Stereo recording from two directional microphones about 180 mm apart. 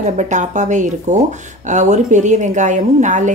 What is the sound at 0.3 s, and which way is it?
Speech, 40° right (ahead or behind).